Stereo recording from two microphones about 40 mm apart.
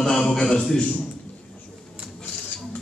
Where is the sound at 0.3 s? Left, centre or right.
Centre.